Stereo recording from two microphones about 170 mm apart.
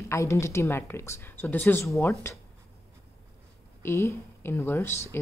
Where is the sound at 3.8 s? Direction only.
15° left (ahead or behind).